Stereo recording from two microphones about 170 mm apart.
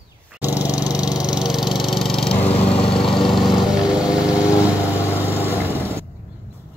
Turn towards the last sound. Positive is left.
turn(degrees=-10)  # may be behind; listen again after turning